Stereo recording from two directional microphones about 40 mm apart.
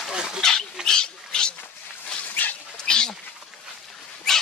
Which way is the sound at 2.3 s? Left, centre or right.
Left.